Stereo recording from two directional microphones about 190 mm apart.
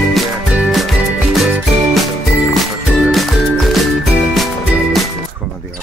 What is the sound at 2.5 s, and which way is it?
Music, centre (ahead or behind).